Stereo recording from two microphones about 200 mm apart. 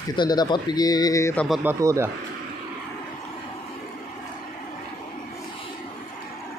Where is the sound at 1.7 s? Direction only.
15° right (ahead or behind).